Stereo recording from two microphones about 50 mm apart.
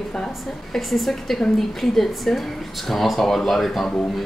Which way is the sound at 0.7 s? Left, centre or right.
Centre.